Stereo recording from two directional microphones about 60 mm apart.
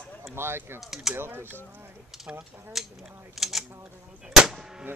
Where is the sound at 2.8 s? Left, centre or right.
Centre.